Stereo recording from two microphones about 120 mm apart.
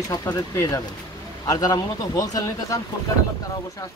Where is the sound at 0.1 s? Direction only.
30° left (ahead or behind).